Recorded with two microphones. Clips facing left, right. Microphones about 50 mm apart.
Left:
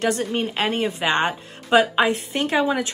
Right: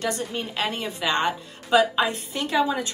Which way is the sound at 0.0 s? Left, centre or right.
Left.